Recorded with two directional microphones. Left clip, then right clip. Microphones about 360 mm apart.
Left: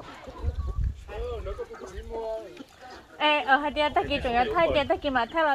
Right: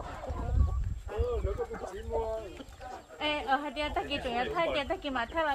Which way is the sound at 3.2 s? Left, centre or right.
Centre.